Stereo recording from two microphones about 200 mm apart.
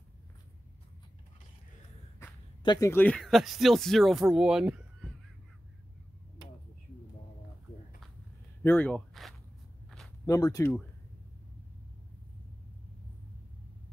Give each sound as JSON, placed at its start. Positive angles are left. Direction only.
{"t": 2.6, "sound": "speech", "side_deg": 20}
{"t": 8.6, "sound": "speech", "side_deg": 10}
{"t": 10.2, "sound": "speech", "side_deg": 15}